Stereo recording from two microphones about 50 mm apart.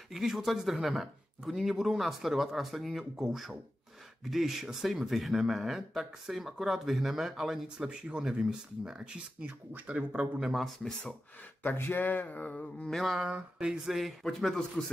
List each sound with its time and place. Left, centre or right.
0.1 s speech: centre
9.5 s speech: right
10.4 s speech: centre
11.7 s speech: left
12.9 s speech: centre
13.3 s speech: right
13.8 s speech: centre